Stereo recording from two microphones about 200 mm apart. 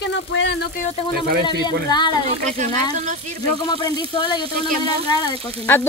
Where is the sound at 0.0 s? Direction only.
60° left (ahead or behind).